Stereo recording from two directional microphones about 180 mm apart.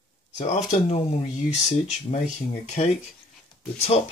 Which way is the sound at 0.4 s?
40° left (ahead or behind).